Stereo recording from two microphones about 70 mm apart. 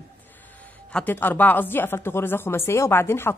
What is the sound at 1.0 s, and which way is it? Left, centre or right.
Speech, left.